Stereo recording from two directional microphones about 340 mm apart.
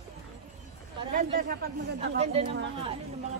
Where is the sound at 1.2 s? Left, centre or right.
Right.